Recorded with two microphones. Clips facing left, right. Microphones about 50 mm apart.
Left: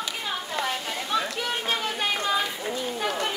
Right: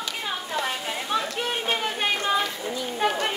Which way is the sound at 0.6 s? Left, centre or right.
Centre.